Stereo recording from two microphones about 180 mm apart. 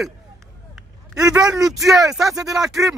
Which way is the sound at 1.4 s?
Centre (ahead or behind).